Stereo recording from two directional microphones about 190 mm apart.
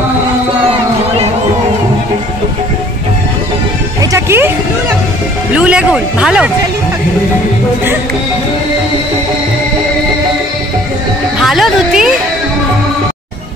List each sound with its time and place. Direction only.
4.0 s music: 15° right (ahead or behind)
5.5 s speech: 5° right (ahead or behind)
11.4 s a sound: centre (ahead or behind)